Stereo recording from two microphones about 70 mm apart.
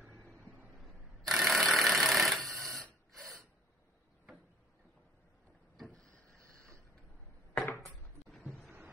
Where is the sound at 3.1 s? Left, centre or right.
Centre.